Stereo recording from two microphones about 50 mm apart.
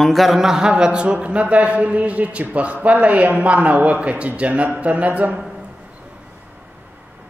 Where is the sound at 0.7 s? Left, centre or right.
Right.